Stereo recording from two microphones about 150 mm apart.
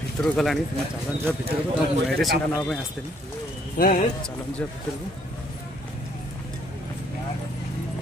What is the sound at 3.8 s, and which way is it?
Speech, 70° left (ahead or behind).